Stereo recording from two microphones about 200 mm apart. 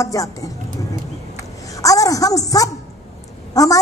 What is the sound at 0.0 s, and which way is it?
Speech, 15° left (ahead or behind).